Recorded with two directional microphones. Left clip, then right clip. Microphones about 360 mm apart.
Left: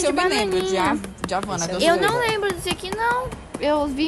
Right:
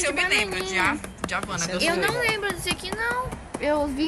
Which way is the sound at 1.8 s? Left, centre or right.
Left.